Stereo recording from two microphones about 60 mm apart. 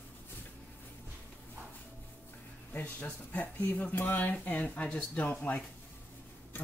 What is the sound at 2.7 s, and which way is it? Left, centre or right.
Speech, left.